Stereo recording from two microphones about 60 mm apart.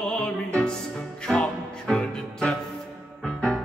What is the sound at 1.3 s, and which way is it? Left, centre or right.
Music, centre.